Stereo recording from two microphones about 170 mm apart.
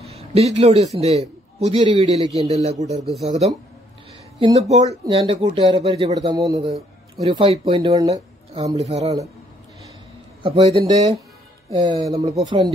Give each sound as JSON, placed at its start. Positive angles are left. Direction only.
{"t": 0.0, "sound": "a sound", "side_deg": -35}
{"t": 0.9, "sound": "a man's voice", "side_deg": -40}
{"t": 4.6, "sound": "speech", "side_deg": -40}
{"t": 7.4, "sound": "speech", "side_deg": -35}
{"t": 8.7, "sound": "speech", "side_deg": -40}
{"t": 10.4, "sound": "speech", "side_deg": -35}
{"t": 10.7, "sound": "speech", "side_deg": -20}
{"t": 12.3, "sound": "speech", "side_deg": -40}